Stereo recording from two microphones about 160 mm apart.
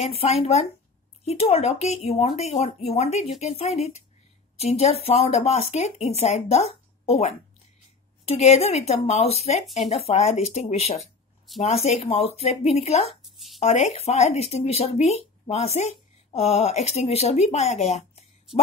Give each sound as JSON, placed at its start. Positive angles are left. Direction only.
{"t": 0.0, "sound": "speech", "side_deg": 40}
{"t": 11.0, "sound": "a sound", "side_deg": 0}
{"t": 11.6, "sound": "speech", "side_deg": 40}